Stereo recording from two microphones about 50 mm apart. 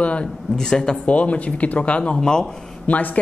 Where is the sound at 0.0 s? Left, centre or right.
Left.